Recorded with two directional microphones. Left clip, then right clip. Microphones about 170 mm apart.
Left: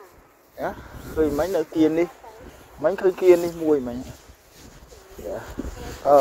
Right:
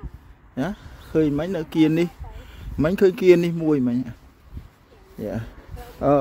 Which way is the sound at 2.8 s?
50° right (ahead or behind).